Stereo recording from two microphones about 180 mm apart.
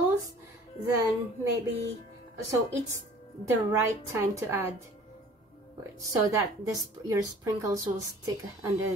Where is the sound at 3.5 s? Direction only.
15° right (ahead or behind).